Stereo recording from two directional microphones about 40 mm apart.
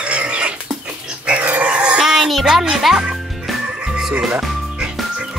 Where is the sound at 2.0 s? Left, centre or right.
Centre.